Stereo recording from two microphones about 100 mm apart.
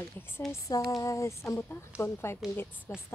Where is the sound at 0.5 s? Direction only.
35° left (ahead or behind).